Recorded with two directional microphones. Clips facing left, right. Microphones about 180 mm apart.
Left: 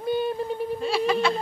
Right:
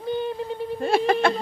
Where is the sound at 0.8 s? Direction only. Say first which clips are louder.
Right 3 dB; 50° right (ahead or behind).